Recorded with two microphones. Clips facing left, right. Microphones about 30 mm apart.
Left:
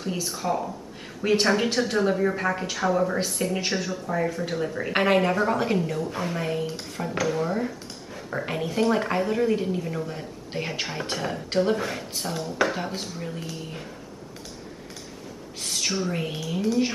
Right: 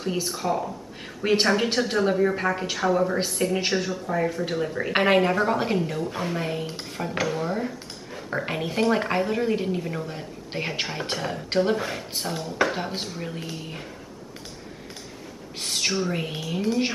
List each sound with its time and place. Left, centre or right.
0.0 s speech: centre
1.2 s speech: centre
8.1 s a sound: centre
8.6 s speech: centre
12.9 s speech: right
15.6 s speech: centre